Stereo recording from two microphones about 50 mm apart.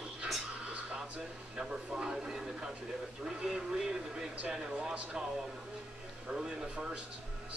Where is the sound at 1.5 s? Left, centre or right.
Centre.